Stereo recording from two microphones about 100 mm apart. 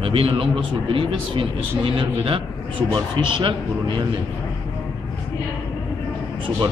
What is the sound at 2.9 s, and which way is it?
A man's voice, 55° right (ahead or behind).